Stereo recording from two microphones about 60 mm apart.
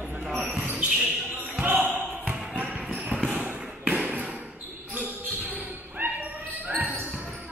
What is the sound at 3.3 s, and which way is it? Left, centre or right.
Bouncing, right.